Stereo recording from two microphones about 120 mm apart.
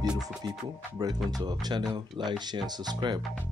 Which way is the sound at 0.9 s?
35° right (ahead or behind).